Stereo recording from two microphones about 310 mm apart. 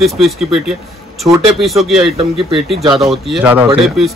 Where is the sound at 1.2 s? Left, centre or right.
Centre.